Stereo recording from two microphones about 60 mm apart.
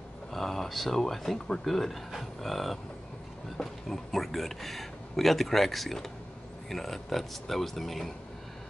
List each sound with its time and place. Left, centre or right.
0.3 s speech: centre